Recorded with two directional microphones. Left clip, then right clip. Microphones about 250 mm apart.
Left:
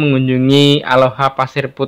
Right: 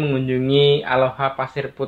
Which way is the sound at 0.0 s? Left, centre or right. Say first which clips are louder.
Left 7 dB; left.